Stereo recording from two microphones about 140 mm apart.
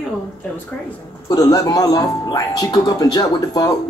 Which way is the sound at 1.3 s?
25° left (ahead or behind).